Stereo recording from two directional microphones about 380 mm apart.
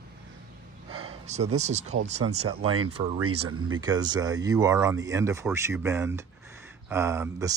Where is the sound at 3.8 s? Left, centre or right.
Centre.